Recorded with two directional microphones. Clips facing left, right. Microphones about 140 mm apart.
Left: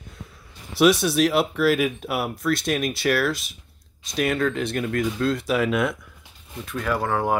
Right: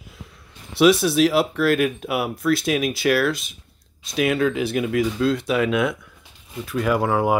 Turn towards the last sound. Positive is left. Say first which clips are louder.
# right 3 dB
turn(degrees=-10)  # may be behind; listen again after turning